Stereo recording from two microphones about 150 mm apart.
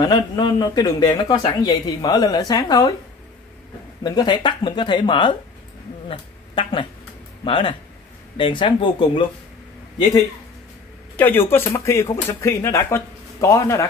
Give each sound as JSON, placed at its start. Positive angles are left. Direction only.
{"t": 0.0, "sound": "speech", "side_deg": 25}
{"t": 4.0, "sound": "speech", "side_deg": 25}
{"t": 11.1, "sound": "speech", "side_deg": 15}